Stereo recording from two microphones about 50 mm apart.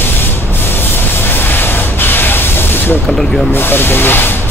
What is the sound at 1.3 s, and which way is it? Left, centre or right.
Spray, left.